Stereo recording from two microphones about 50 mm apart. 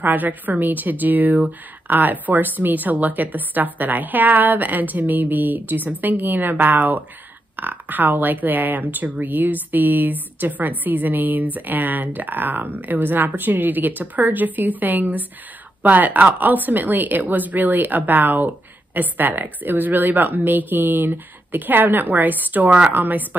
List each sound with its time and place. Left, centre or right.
0.0 s a woman's voice: right